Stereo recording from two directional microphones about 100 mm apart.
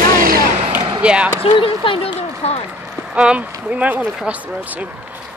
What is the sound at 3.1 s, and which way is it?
Speech, 10° right (ahead or behind).